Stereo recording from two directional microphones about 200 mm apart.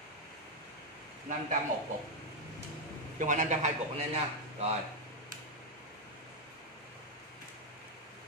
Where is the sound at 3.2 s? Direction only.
40° right (ahead or behind).